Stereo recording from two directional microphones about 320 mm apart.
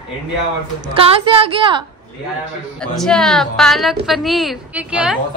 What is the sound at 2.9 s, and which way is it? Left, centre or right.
Speech, centre.